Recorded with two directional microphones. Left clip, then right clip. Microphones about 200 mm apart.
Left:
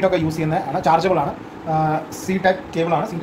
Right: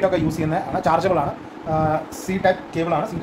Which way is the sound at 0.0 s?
5° right (ahead or behind).